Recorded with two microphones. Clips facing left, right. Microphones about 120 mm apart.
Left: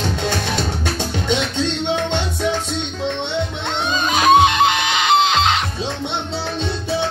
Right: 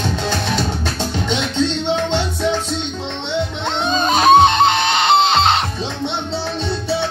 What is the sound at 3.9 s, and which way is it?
Music, 30° right (ahead or behind).